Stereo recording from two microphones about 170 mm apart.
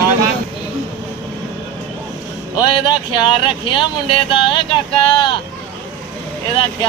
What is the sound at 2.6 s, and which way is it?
Speech, 25° left (ahead or behind).